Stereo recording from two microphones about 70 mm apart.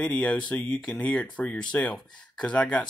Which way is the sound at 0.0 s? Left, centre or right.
Centre.